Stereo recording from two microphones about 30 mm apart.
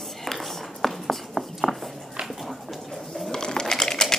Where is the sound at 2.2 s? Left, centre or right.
Centre.